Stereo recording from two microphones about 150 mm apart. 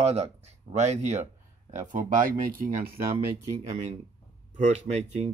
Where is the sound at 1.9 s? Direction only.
60° right (ahead or behind).